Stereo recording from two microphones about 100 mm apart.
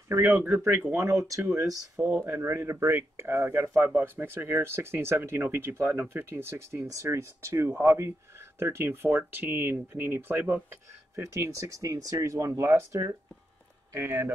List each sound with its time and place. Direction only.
0.1 s speech: 25° right (ahead or behind)